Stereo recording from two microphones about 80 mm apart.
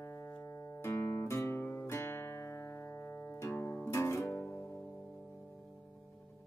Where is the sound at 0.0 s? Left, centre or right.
Left.